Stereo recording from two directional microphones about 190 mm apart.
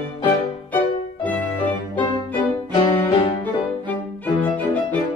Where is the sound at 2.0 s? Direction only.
25° left (ahead or behind).